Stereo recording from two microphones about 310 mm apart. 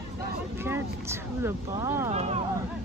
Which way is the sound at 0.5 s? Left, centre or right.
Centre.